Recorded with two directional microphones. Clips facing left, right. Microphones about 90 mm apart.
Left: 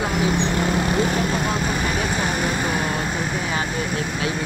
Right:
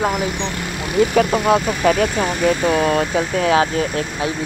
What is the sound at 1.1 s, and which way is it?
Speech, 75° right (ahead or behind).